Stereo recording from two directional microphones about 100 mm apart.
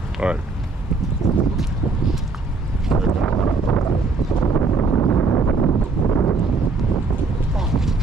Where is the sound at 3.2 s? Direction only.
25° left (ahead or behind).